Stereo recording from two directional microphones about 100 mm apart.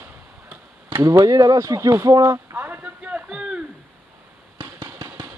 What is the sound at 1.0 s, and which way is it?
Speech, 40° right (ahead or behind).